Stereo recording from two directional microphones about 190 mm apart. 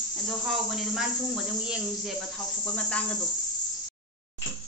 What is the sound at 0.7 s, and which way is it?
A woman's voice, centre (ahead or behind).